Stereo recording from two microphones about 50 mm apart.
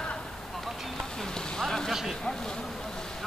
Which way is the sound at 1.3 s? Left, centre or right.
Centre.